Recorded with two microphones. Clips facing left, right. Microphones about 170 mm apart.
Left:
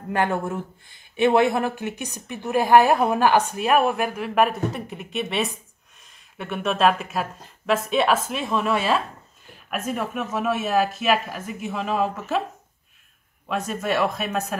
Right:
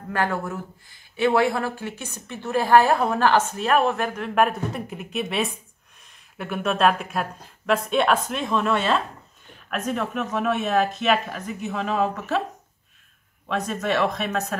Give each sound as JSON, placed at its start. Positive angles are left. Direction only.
{"t": 0.1, "sound": "speech", "side_deg": 20}
{"t": 13.5, "sound": "speech", "side_deg": 5}